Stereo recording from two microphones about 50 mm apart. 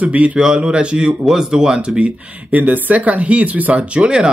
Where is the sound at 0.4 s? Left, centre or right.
Centre.